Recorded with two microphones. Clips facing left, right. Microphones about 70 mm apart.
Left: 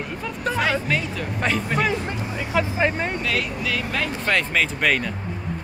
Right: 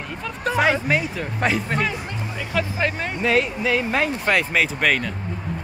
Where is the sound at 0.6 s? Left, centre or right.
Centre.